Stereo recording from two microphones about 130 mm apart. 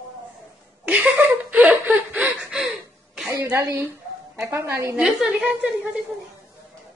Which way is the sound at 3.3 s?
25° right (ahead or behind).